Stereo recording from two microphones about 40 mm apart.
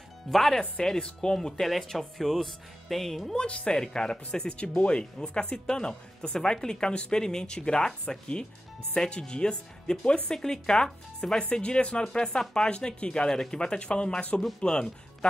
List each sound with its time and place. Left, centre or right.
0.3 s speech: centre
1.0 s speech: centre
1.7 s speech: centre
3.3 s speech: left